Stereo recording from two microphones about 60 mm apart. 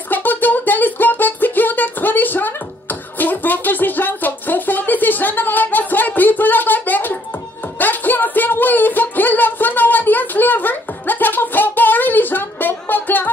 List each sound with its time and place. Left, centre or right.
0.1 s music: left